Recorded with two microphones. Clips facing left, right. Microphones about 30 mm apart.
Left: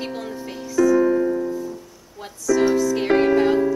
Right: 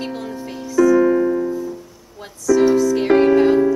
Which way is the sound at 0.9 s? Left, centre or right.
Centre.